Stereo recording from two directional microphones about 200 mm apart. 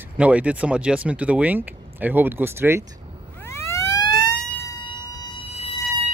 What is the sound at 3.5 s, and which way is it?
Emergency vehicle, 15° left (ahead or behind).